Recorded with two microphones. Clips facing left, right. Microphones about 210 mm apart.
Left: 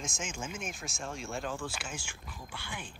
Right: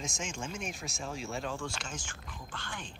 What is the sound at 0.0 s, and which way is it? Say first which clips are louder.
Speech: right 1 dB; centre (ahead or behind).